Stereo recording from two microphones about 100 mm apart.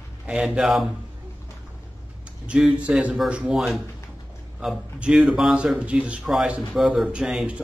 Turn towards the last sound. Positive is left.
turn(degrees=-5)  # may be behind; listen again after turning